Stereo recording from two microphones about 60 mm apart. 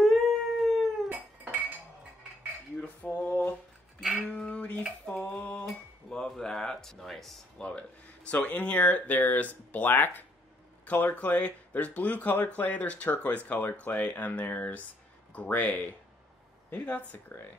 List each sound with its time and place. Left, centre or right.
0.0 s howl: centre
1.0 s cat: right
2.8 s male singing: left
4.3 s dishes: centre
5.2 s a sound: left; by 7.6 s centre
8.3 s speech: left
17.3 s speech: left